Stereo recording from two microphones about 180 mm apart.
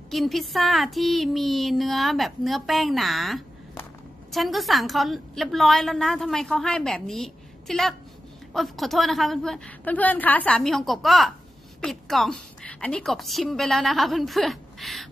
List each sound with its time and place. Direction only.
0.1 s a woman's voice: centre (ahead or behind)